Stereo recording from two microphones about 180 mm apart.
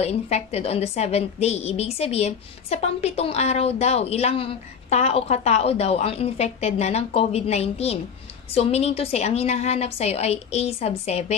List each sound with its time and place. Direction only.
0.0 s a woman's voice: 35° left (ahead or behind)